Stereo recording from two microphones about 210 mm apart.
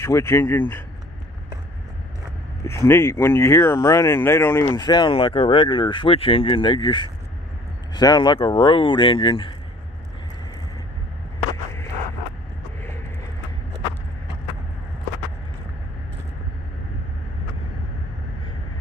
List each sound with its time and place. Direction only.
0.0 s speech: 10° left (ahead or behind)
2.6 s speech: 15° left (ahead or behind)